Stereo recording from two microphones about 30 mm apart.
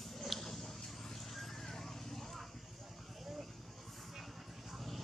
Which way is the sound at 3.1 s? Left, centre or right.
Centre.